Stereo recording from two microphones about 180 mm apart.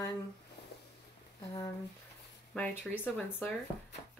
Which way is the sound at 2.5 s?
5° left (ahead or behind).